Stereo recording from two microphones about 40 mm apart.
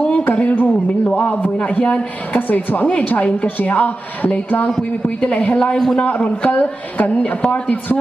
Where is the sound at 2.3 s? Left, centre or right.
Left.